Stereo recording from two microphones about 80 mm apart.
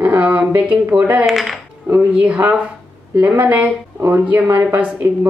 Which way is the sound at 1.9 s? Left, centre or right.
Centre.